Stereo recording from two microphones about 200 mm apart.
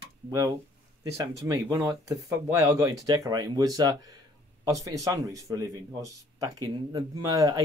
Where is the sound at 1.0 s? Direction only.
15° right (ahead or behind).